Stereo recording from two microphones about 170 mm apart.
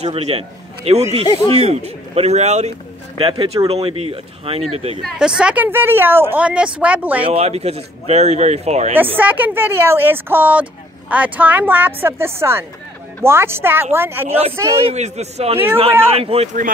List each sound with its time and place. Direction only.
0.0 s a man's voice: 35° right (ahead or behind)
1.2 s speech: 30° left (ahead or behind)
1.5 s speech: 40° right (ahead or behind)
3.2 s speech: 30° right (ahead or behind)
5.0 s a woman's voice: 5° right (ahead or behind)
7.2 s speech: 35° right (ahead or behind)
8.9 s a woman's voice: 10° right (ahead or behind)
14.9 s speech: 40° right (ahead or behind)